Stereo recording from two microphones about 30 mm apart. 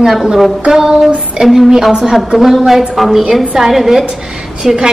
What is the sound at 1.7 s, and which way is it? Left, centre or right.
A woman's voice, centre.